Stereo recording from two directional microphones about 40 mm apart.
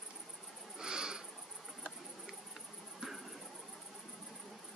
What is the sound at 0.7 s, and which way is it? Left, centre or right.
Owl, centre.